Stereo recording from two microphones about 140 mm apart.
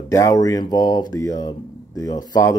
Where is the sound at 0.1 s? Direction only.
25° left (ahead or behind).